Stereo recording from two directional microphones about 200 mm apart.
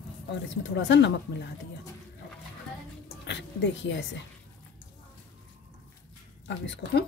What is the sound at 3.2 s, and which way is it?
Speech, 60° left (ahead or behind).